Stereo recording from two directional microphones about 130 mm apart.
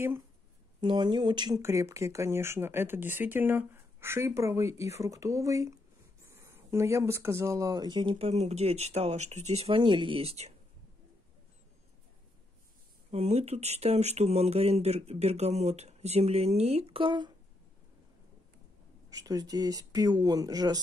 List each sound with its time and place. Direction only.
0.7 s speech: 35° right (ahead or behind)
1.6 s speech: 20° right (ahead or behind); by 10.5 s 50° right (ahead or behind)
13.1 s speech: 55° right (ahead or behind)
19.0 s speech: 30° right (ahead or behind)